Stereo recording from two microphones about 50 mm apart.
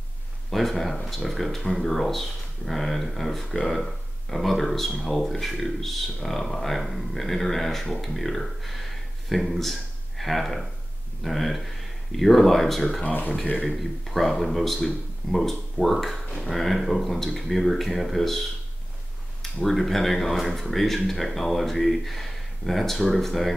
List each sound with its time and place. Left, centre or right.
0.5 s speech: centre
13.0 s speech: left
13.7 s speech: centre
19.4 s speech: centre